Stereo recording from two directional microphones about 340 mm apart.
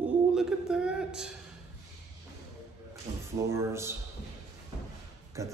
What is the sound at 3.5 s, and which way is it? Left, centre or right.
Speech, centre.